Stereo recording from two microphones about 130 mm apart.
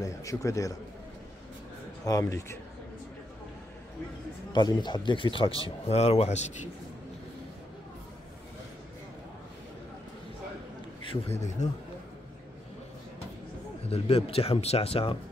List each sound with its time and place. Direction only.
0.0 s a man's voice: 25° left (ahead or behind)
2.0 s a man's voice: 25° left (ahead or behind)
4.5 s speech: 35° left (ahead or behind); by 6.7 s 60° left (ahead or behind)
11.1 s a man's voice: 55° left (ahead or behind)
13.8 s speech: 50° left (ahead or behind)